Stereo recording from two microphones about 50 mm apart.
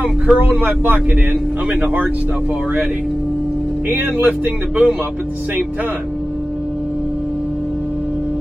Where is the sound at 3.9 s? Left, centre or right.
Right.